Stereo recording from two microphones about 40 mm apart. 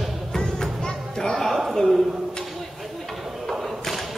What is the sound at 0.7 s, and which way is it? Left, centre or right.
Music, centre.